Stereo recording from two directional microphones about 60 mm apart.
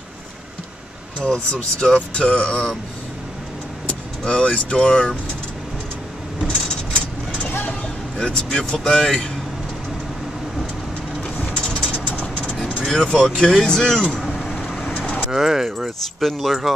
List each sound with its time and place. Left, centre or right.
1.2 s speech: centre
4.3 s speech: left
7.4 s vehicle: left
8.2 s speech: centre
11.3 s vehicle: left
12.8 s speech: centre
14.2 s vehicle: centre
15.0 s vehicle: left
15.3 s speech: centre